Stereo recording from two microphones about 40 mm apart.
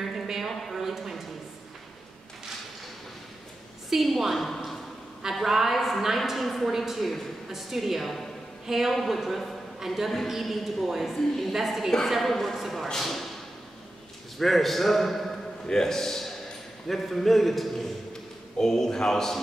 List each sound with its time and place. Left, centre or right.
0.0 s a sound: centre
3.9 s a woman's voice: centre
11.5 s a woman's voice: centre
14.4 s a woman's voice: centre
18.6 s a man's voice: centre